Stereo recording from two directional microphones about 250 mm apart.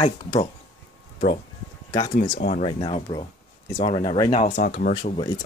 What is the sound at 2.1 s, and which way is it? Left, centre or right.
Speech, left.